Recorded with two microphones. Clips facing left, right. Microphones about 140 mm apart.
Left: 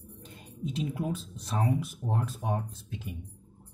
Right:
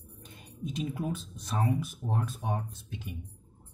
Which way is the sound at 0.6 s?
25° left (ahead or behind).